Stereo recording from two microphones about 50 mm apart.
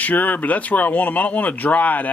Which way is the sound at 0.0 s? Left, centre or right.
Left.